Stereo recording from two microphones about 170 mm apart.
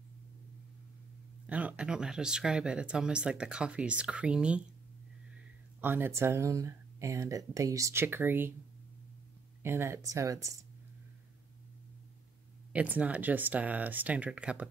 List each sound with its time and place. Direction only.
1.5 s speech: 10° right (ahead or behind)
5.8 s speech: 10° right (ahead or behind)
9.6 s speech: 15° right (ahead or behind)
12.7 s speech: 10° right (ahead or behind)